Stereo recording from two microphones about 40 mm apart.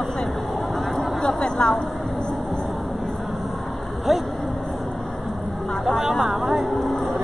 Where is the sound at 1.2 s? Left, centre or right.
Left.